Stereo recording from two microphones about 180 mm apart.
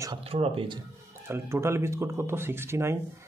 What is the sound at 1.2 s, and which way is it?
Speech, 15° right (ahead or behind).